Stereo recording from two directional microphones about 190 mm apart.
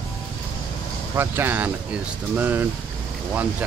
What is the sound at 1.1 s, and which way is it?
Speech, 10° right (ahead or behind).